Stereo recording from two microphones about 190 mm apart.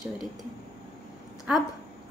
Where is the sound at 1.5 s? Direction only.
5° right (ahead or behind).